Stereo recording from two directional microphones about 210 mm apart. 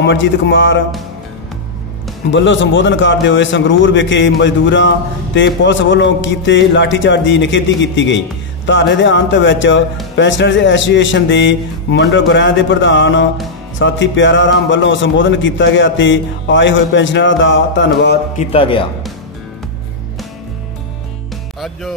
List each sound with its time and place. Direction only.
0.0 s a man's voice: 60° left (ahead or behind)
2.3 s a man's voice: 60° left (ahead or behind)
18.4 s a man's voice: 25° left (ahead or behind)
21.5 s music: centre (ahead or behind)